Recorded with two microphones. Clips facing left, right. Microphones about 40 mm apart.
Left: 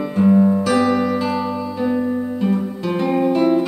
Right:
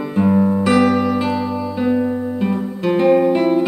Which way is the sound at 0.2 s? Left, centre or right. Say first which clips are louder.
Left 1 dB; centre.